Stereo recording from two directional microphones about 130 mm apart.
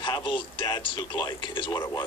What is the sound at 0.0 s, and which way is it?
Speech, 40° left (ahead or behind).